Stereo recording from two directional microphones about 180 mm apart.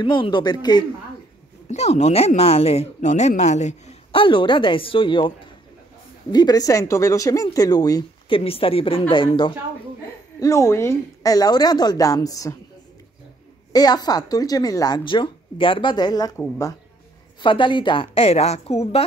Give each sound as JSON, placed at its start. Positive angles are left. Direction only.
{"t": 0.0, "sound": "speech", "side_deg": 25}
{"t": 1.7, "sound": "speech", "side_deg": 40}
{"t": 6.3, "sound": "speech", "side_deg": 20}
{"t": 8.5, "sound": "speech", "side_deg": 30}
{"t": 10.4, "sound": "speech", "side_deg": 15}
{"t": 13.7, "sound": "speech", "side_deg": 20}